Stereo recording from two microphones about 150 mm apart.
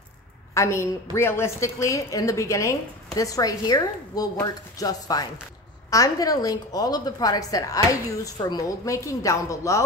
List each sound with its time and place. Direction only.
0.6 s a woman's voice: 20° left (ahead or behind)